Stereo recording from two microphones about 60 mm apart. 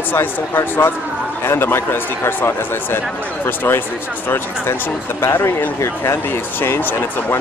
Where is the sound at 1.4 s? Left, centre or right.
Left.